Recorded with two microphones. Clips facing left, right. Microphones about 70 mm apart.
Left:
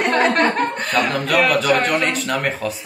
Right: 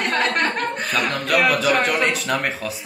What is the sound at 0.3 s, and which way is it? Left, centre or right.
Chuckle, centre.